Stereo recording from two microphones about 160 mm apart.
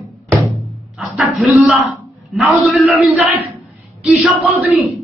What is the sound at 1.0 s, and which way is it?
A woman's voice, centre (ahead or behind).